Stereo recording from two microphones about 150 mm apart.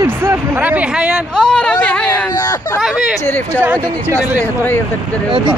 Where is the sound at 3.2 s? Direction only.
15° left (ahead or behind).